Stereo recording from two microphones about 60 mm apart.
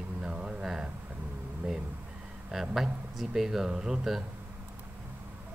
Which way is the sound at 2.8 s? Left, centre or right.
Centre.